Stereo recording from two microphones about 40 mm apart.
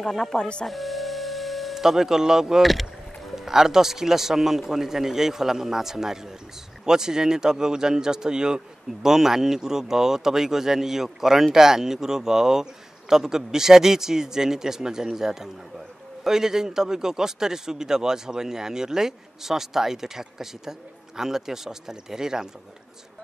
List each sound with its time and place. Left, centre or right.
0.1 s speech: centre
0.4 s speech: left
0.7 s music: centre
1.8 s speech: centre
2.6 s speech: centre
3.3 s speech: centre